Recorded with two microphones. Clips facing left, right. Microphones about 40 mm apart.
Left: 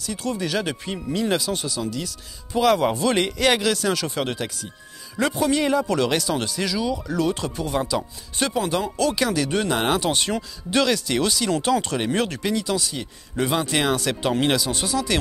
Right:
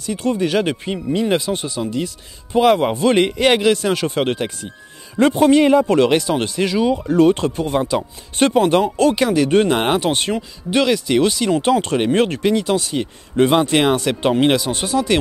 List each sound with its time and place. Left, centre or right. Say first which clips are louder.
0.0 s speech: right 7 dB; right
0.9 s speech: right 4 dB; right
10.3 s speech: right 4 dB; right